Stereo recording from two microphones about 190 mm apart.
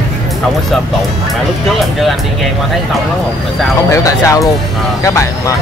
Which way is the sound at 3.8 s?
15° left (ahead or behind).